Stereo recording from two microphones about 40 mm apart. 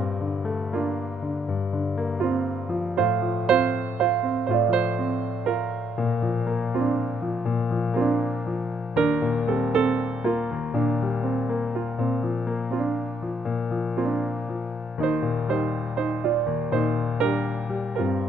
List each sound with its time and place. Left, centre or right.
2.1 s music: centre
13.9 s music: centre